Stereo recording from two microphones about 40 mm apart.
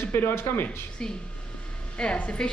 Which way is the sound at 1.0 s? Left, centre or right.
Centre.